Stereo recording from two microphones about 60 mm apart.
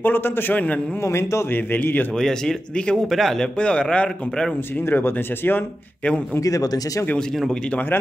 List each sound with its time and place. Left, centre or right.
0.0 s speech: left
1.0 s a man's voice: left
1.5 s speech: left
2.1 s a man's voice: centre
3.5 s a man's voice: centre
4.8 s speech: left
6.4 s speech: left